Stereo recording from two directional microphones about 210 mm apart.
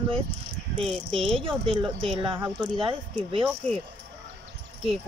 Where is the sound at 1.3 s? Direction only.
25° right (ahead or behind).